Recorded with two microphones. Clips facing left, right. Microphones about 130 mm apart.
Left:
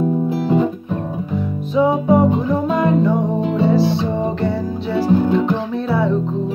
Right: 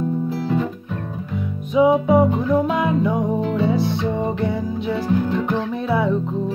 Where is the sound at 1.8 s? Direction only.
Centre (ahead or behind).